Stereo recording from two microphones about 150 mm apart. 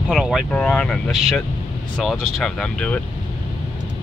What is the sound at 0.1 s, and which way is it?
Speech, centre (ahead or behind).